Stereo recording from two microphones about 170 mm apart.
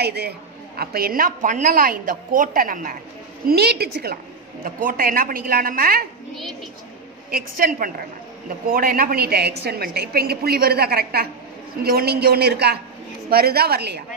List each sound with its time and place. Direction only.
0.0 s a woman's voice: 75° right (ahead or behind); by 3.0 s 55° right (ahead or behind)
3.4 s a woman's voice: 70° right (ahead or behind)
4.6 s a woman's voice: 55° right (ahead or behind)
7.2 s a woman's voice: 55° right (ahead or behind); by 14.0 s 75° right (ahead or behind)